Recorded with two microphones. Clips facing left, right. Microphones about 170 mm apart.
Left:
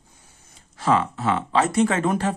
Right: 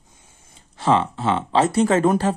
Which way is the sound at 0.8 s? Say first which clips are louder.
Right 2 dB; 25° right (ahead or behind).